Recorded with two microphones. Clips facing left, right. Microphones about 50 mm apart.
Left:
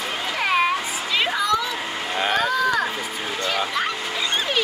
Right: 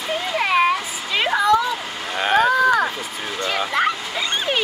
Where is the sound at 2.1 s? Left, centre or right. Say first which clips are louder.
Right 4 dB; centre.